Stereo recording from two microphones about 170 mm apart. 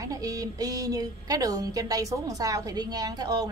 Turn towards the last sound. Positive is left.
turn(degrees=-20)  # may be behind; listen again after turning